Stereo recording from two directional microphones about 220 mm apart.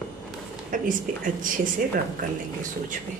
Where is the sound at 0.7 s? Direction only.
35° right (ahead or behind).